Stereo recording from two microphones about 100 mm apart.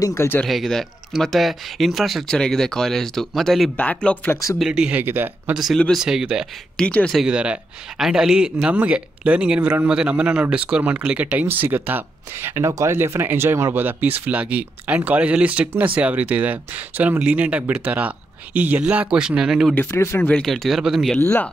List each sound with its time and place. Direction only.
0.0 s speech: 30° left (ahead or behind)
0.5 s speech: centre (ahead or behind)
3.7 s speech: 15° left (ahead or behind)
4.6 s speech: 10° right (ahead or behind)
5.0 s speech: 20° right (ahead or behind)
5.5 s speech: 5° right (ahead or behind)
6.8 s speech: 10° left (ahead or behind)
7.2 s speech: 10° right (ahead or behind)
19.7 s speech: 20° left (ahead or behind)
20.2 s speech: 5° left (ahead or behind)